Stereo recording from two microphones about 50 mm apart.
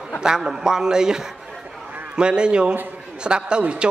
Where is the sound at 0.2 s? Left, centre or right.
Centre.